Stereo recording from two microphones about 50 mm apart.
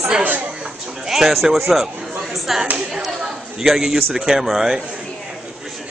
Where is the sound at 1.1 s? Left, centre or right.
Centre.